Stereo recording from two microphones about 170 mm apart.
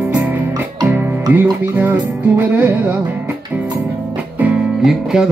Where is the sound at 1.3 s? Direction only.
10° right (ahead or behind).